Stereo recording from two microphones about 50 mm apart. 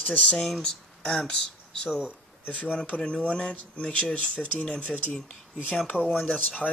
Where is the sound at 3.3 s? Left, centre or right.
Left.